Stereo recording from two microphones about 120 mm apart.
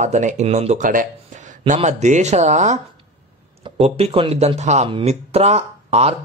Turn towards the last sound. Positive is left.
turn(degrees=-60)  # may be behind; listen again after turning